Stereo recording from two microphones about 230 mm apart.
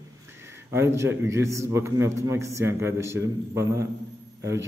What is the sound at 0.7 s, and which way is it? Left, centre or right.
Speech, centre.